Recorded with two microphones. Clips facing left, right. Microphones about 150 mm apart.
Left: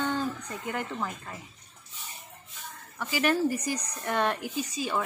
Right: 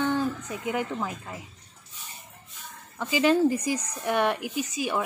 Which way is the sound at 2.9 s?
20° right (ahead or behind).